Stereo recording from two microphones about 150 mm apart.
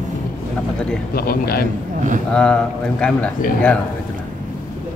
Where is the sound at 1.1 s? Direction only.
85° left.